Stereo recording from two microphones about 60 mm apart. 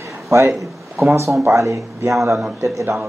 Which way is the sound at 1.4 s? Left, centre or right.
Right.